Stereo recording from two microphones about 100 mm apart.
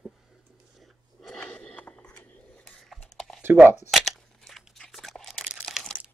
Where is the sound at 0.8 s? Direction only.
5° left (ahead or behind).